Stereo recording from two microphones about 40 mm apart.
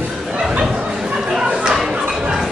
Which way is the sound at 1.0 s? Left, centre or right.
Centre.